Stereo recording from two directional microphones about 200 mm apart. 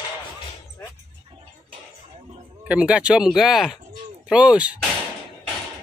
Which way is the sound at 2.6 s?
5° right (ahead or behind).